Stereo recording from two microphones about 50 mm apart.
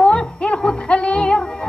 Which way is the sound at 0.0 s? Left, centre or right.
Centre.